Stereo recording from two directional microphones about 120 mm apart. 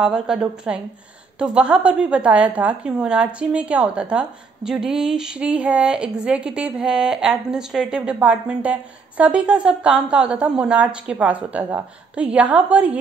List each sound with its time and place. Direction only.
0.0 s a woman's voice: 5° right (ahead or behind)